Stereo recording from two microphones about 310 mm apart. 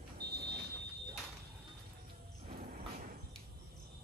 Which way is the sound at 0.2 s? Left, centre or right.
Right.